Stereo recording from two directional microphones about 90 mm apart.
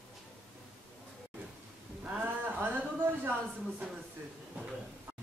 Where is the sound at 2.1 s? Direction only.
20° right (ahead or behind).